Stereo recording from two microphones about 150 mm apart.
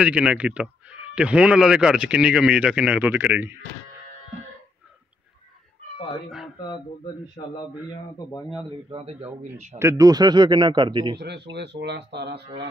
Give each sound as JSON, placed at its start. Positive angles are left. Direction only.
{"t": 0.0, "sound": "speech", "side_deg": -5}
{"t": 7.4, "sound": "a man's voice", "side_deg": 35}
{"t": 8.9, "sound": "a man's voice", "side_deg": -40}
{"t": 9.8, "sound": "a man's voice", "side_deg": -20}
{"t": 12.2, "sound": "speech", "side_deg": -90}